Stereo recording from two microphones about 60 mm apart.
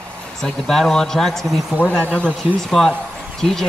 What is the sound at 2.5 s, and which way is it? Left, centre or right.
Speech, centre.